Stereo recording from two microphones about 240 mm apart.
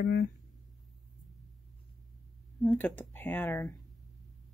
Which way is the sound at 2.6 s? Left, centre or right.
Centre.